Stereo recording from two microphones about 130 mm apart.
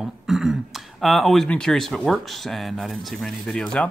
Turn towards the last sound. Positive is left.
turn(degrees=5)  # may be behind; listen again after turning